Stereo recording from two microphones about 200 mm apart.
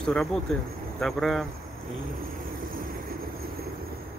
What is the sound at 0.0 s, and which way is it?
Speech, centre (ahead or behind).